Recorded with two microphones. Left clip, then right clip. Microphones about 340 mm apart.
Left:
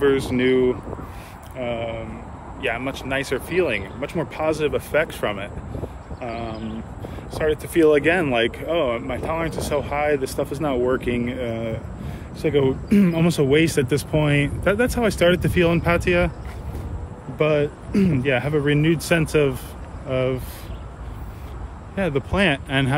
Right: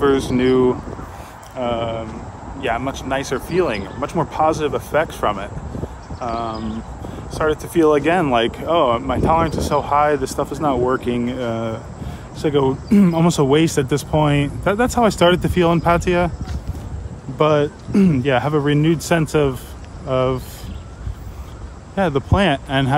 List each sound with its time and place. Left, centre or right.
0.0 s speech: centre
17.4 s speech: centre
21.9 s speech: centre